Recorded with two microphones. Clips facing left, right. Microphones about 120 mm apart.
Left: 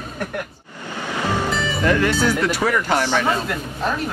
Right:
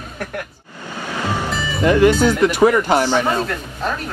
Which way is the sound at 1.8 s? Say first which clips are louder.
Right 6 dB; 15° right (ahead or behind).